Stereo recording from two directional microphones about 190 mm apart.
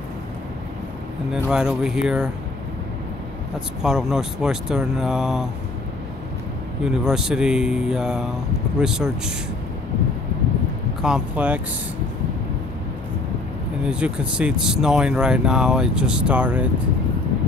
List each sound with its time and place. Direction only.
1.3 s speech: 5° right (ahead or behind)
3.5 s speech: 5° right (ahead or behind)
6.8 s speech: 5° right (ahead or behind)
11.0 s speech: 5° right (ahead or behind)
13.8 s speech: 5° right (ahead or behind)